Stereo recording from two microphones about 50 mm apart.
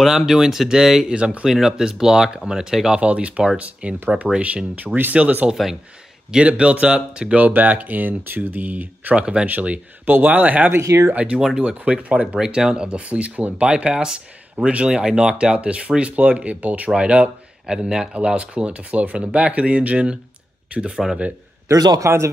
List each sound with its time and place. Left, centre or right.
0.0 s speech: centre
3.0 s speech: right
4.8 s speech: right
5.1 s speech: right
7.3 s speech: right
9.2 s speech: centre
9.5 s speech: right
10.8 s speech: right
11.1 s speech: right
17.6 s speech: centre
21.6 s speech: right